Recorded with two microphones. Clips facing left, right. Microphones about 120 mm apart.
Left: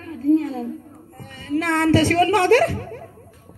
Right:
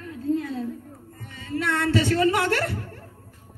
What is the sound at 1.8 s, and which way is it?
Speech, 90° left.